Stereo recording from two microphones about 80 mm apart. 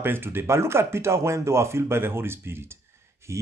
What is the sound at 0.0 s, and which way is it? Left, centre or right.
Speech, right.